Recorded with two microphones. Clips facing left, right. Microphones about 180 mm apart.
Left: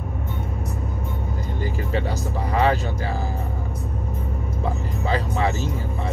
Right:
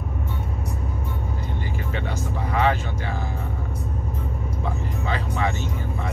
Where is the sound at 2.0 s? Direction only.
35° left (ahead or behind).